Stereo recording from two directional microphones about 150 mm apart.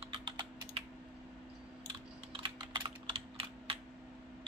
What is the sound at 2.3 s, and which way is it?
Computer keyboard, 30° right (ahead or behind).